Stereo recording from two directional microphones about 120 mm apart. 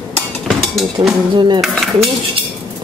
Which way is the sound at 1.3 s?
40° right (ahead or behind).